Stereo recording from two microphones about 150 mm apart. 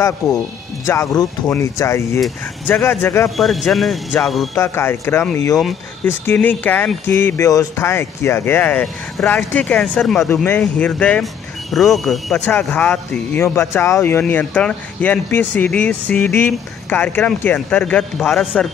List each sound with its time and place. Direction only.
0.8 s speech: 20° left (ahead or behind)
3.3 s speech: centre (ahead or behind)
4.6 s speech: 15° left (ahead or behind)